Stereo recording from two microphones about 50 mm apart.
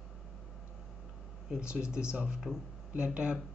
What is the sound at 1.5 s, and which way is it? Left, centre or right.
Speech, centre.